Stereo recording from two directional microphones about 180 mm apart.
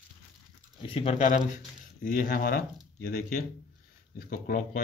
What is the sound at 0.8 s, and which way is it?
Speech, 30° left (ahead or behind).